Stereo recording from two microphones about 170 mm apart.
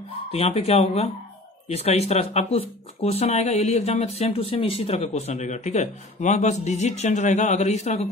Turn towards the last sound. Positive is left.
turn(degrees=40)  # may be behind; listen again after turning